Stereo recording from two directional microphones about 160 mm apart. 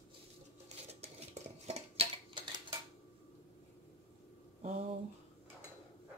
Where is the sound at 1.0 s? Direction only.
40° right (ahead or behind).